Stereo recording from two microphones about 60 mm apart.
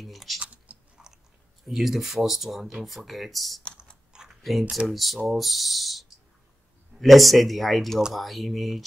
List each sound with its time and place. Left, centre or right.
0.0 s speech: centre
0.4 s typing: right
1.6 s speech: centre
4.3 s a sound: centre
4.8 s speech: centre